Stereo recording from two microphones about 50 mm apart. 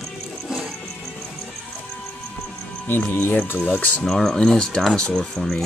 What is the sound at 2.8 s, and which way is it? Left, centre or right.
Speech, left.